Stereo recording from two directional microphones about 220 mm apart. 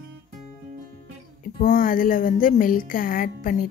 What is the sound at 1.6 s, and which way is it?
A woman's voice, 40° left (ahead or behind).